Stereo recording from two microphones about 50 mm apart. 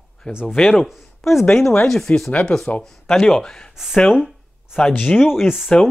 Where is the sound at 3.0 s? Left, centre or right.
Centre.